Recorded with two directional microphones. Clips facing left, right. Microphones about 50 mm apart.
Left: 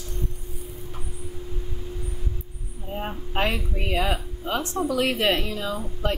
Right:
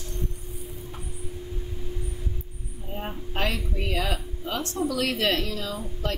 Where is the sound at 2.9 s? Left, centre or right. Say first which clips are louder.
Left 4 dB; left.